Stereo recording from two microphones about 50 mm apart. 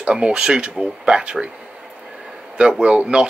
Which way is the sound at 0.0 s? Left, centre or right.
Right.